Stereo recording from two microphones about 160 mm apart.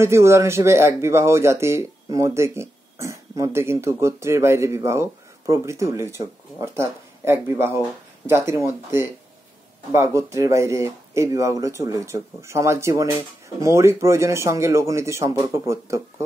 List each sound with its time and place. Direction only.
0.0 s speech: 15° right (ahead or behind)